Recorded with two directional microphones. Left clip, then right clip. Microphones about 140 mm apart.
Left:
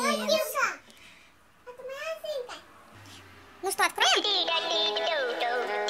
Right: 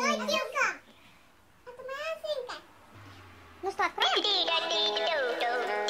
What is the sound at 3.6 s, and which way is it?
Music, 10° left (ahead or behind).